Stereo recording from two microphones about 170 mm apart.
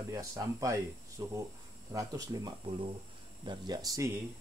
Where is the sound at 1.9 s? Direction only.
20° right (ahead or behind).